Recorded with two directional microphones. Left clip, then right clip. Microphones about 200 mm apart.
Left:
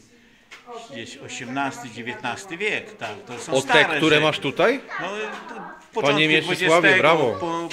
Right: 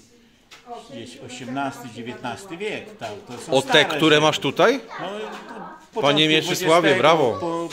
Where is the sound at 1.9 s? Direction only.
25° right (ahead or behind).